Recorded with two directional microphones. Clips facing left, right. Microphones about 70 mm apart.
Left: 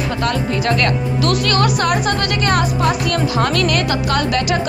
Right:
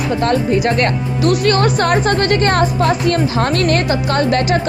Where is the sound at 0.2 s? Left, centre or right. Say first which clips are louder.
Right 5 dB; right.